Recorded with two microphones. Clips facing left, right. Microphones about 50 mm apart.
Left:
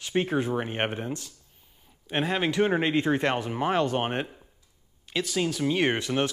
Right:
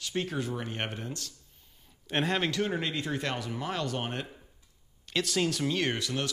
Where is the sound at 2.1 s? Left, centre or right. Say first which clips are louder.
Left 2 dB; centre.